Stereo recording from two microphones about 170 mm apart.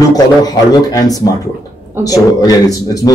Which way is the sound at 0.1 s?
20° left (ahead or behind).